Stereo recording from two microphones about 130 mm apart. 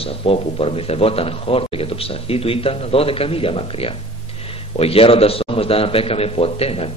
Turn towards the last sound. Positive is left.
turn(degrees=50)  # may be behind; listen again after turning